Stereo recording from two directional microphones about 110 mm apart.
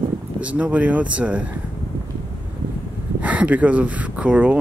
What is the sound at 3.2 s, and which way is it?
Speech, 15° right (ahead or behind).